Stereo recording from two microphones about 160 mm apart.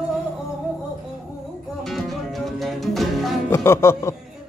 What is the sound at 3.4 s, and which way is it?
Music, 15° left (ahead or behind).